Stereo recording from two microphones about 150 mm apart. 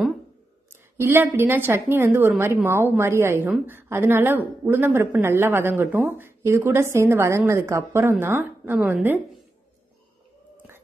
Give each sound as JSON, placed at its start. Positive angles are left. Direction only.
{"t": 0.9, "sound": "a woman's voice", "side_deg": -15}